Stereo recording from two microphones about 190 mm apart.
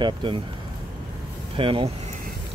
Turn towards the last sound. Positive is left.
turn(degrees=-25)  # may be behind; listen again after turning